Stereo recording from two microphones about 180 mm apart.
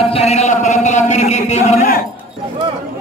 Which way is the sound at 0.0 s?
35° left (ahead or behind).